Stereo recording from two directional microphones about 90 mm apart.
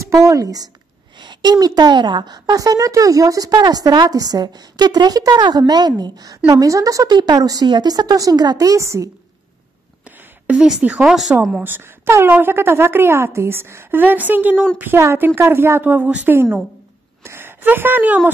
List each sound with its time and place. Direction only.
0.1 s speech: 35° right (ahead or behind)
1.2 s a woman's voice: 55° right (ahead or behind); by 9.1 s 35° right (ahead or behind)
10.4 s a woman's voice: 10° right (ahead or behind)